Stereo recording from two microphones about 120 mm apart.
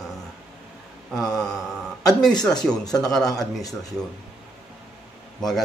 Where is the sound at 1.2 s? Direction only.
30° left (ahead or behind).